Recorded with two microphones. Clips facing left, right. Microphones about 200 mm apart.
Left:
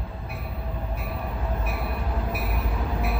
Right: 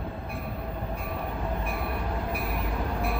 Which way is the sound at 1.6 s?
5° left (ahead or behind).